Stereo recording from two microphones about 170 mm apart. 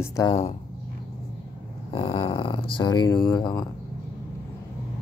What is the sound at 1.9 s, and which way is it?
Speech, 30° left (ahead or behind).